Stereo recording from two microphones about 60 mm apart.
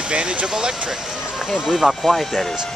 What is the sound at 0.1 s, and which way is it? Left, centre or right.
Speech, centre.